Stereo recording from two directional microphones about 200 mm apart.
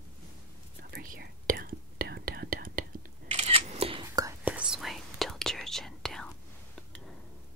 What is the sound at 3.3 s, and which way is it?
Single-lens reflex camera, 30° right (ahead or behind).